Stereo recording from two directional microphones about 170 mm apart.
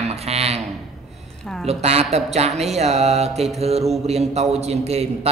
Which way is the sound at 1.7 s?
40° right (ahead or behind).